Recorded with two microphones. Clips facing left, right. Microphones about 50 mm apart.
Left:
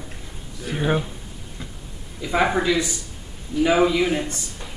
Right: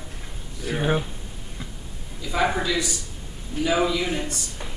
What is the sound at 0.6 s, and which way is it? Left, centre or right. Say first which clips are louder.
Speech: left 1 dB; centre.